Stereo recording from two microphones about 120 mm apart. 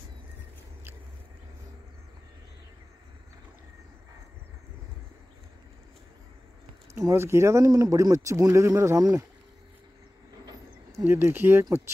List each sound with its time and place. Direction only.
7.0 s speech: 25° right (ahead or behind)
10.4 s a sound: 35° right (ahead or behind)
11.1 s speech: 20° right (ahead or behind)